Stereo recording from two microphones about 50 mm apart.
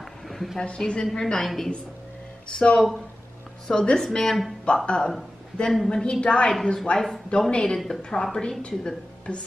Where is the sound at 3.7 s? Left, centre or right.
Centre.